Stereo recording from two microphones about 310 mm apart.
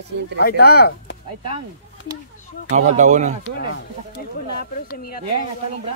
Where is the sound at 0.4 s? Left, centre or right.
Left.